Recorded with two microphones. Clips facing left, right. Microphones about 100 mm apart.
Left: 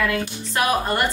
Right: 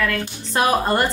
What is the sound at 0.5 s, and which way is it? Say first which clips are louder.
Speech: right 3 dB; 30° right (ahead or behind).